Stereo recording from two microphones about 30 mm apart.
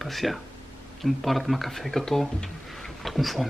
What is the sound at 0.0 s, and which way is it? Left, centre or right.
Speech, centre.